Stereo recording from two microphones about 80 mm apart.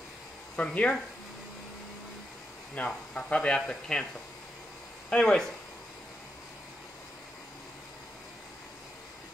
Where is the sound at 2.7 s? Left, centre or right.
Centre.